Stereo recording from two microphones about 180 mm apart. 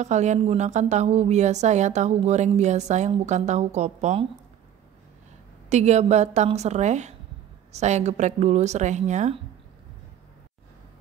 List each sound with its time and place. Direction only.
0.0 s speech: 40° right (ahead or behind)
5.7 s speech: 40° right (ahead or behind)